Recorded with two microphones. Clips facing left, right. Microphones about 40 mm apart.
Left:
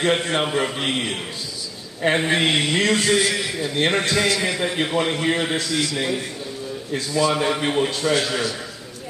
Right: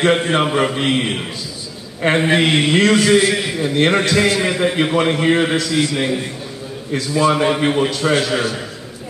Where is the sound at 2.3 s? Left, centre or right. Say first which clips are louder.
Right 5 dB; right.